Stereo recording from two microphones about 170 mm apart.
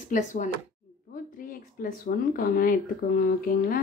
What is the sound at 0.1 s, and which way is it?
A woman's voice, 45° left (ahead or behind).